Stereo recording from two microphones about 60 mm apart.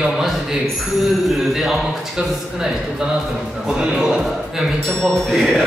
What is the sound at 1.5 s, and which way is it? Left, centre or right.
Speech, centre.